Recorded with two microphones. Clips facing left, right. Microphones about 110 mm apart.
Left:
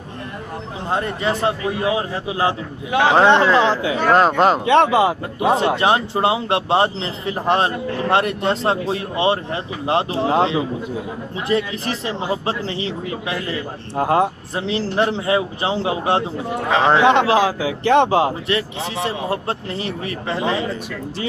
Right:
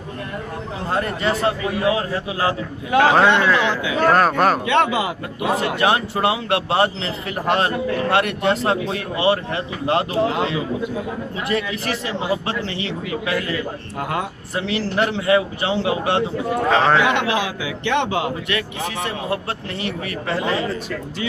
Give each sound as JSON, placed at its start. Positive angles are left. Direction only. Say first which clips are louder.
{"t": 0.8, "sound": "a man's voice", "louder": "even", "side_deg": 20}
{"t": 3.3, "sound": "a man's voice", "louder": "left 3 dB", "side_deg": 30}
{"t": 4.1, "sound": "a man's voice", "louder": "left 3 dB", "side_deg": 20}
{"t": 4.6, "sound": "a man's voice", "louder": "left 5 dB", "side_deg": 30}